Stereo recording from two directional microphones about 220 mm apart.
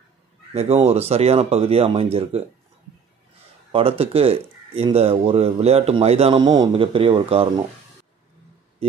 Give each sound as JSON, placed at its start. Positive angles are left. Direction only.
{"t": 0.5, "sound": "speech", "side_deg": -30}
{"t": 3.7, "sound": "speech", "side_deg": -25}